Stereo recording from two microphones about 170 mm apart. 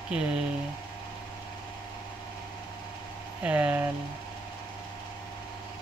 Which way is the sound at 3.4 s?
10° right (ahead or behind).